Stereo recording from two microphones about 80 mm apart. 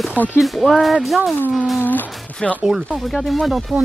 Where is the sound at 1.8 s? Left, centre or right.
Left.